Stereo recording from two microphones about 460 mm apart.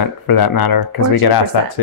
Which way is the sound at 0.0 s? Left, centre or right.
Left.